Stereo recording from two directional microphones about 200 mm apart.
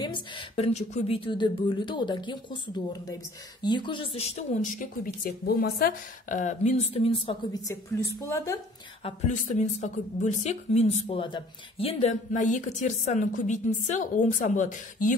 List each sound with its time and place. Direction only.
0.0 s a woman's voice: 25° left (ahead or behind)
9.0 s a woman's voice: 35° left (ahead or behind)